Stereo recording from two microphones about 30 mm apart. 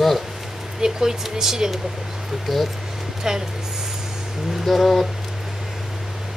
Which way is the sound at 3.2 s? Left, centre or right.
Right.